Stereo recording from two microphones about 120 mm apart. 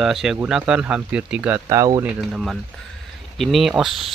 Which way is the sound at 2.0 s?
5° right (ahead or behind).